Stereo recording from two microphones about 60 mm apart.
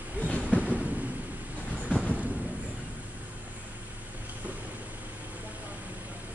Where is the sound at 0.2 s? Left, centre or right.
Left.